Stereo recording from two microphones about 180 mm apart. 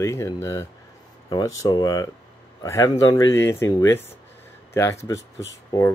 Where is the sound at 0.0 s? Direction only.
15° left (ahead or behind).